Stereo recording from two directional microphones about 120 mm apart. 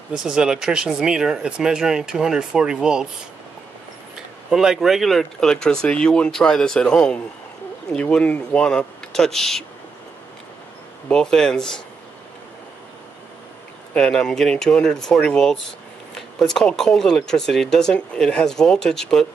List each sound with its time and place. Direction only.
0.1 s speech: 5° right (ahead or behind)
4.5 s speech: 5° right (ahead or behind)
11.1 s speech: 5° left (ahead or behind)
13.9 s speech: 5° left (ahead or behind)